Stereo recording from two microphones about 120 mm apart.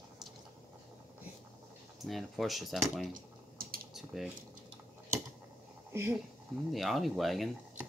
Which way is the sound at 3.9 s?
5° right (ahead or behind).